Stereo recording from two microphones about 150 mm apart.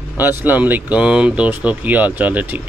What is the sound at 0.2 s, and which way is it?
Speech, 15° right (ahead or behind).